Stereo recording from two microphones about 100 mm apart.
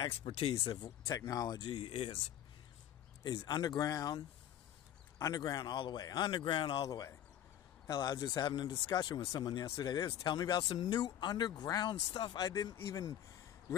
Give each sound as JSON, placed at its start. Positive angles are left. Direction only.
{"t": 0.2, "sound": "speech", "side_deg": 70}
{"t": 0.8, "sound": "speech", "side_deg": 35}
{"t": 3.3, "sound": "speech", "side_deg": 45}
{"t": 5.2, "sound": "speech", "side_deg": 40}
{"t": 6.9, "sound": "speech", "side_deg": 35}